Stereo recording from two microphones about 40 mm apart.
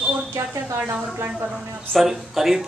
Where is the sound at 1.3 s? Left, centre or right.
Right.